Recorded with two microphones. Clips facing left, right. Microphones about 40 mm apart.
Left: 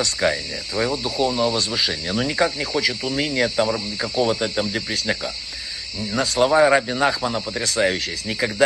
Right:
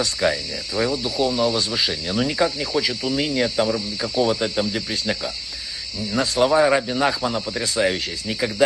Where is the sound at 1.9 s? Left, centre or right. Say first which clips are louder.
Even; left.